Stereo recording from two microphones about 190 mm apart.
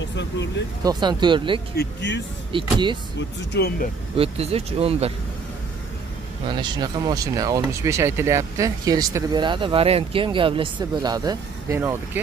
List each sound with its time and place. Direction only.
0.1 s speech: 70° left (ahead or behind)
0.8 s speech: 25° right (ahead or behind)
1.8 s speech: 65° left (ahead or behind)
2.5 s speech: 25° right (ahead or behind)
3.2 s speech: 65° left (ahead or behind)
4.2 s speech: 30° right (ahead or behind)
6.4 s speech: 25° right (ahead or behind)